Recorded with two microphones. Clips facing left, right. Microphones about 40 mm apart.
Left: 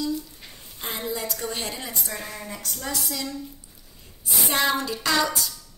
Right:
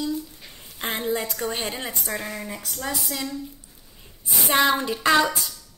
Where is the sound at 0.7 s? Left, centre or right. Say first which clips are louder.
Right 5 dB; right.